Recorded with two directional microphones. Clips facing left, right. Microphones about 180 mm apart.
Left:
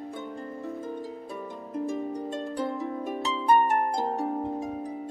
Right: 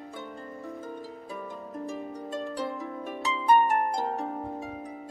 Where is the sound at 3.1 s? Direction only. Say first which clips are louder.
Even; 35° left (ahead or behind).